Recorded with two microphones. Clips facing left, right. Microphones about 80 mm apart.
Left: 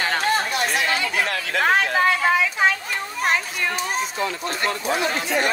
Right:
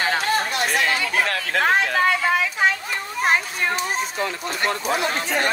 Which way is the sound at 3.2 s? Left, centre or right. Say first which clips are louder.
Right 2 dB; right.